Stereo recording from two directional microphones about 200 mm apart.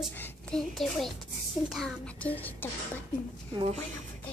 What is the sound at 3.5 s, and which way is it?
Speech, 25° right (ahead or behind).